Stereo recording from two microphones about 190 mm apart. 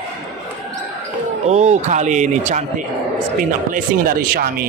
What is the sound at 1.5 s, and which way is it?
A man's voice, 35° right (ahead or behind).